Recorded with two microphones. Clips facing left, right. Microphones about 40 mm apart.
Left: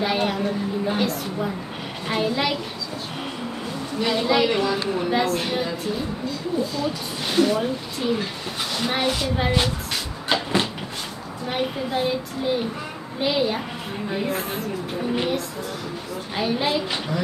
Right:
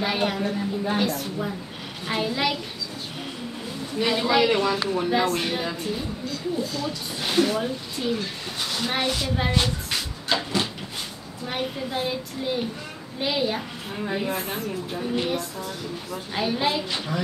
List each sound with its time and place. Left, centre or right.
0.0 s a woman's voice: centre
4.0 s a woman's voice: centre
10.2 s vehicle: left
11.4 s a woman's voice: centre
16.3 s a woman's voice: centre